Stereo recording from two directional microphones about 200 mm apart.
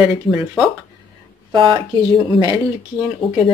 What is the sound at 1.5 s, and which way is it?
Speech, 25° right (ahead or behind).